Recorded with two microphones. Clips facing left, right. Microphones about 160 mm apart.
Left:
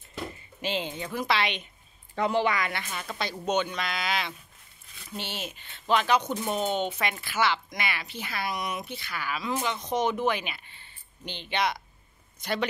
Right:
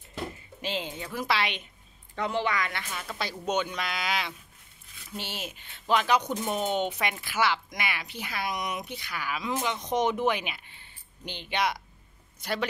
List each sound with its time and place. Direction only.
0.6 s speech: centre (ahead or behind)
2.1 s speech: 10° left (ahead or behind)
3.2 s speech: 10° right (ahead or behind)